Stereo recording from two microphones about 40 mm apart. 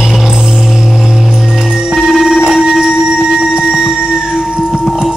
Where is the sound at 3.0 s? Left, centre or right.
Centre.